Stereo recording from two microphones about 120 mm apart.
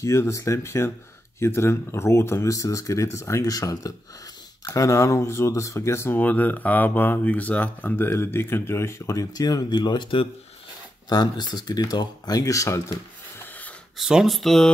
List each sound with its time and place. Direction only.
0.0 s speech: 25° left (ahead or behind)
13.4 s snort: 15° left (ahead or behind)
13.9 s speech: 5° right (ahead or behind)